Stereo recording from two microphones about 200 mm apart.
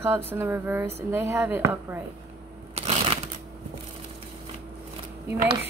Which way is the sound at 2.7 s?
30° right (ahead or behind).